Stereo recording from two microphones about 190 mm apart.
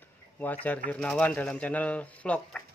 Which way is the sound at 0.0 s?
10° left (ahead or behind).